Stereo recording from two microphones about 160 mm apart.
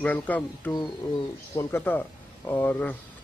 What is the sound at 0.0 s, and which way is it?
A man's voice, 10° left (ahead or behind).